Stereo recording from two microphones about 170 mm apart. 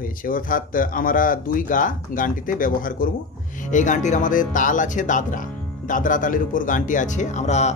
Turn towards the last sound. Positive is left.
turn(degrees=40)  # may be behind; listen again after turning